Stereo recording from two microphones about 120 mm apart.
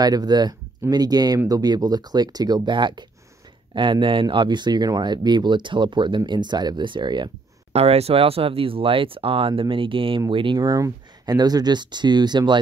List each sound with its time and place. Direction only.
0.0 s speech: 35° right (ahead or behind)
7.7 s speech: 60° right (ahead or behind); by 12.5 s 40° right (ahead or behind)